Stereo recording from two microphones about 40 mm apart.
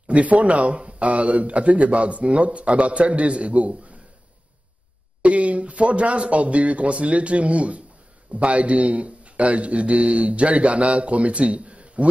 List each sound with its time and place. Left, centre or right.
0.0 s a man's voice: right
5.2 s a man's voice: right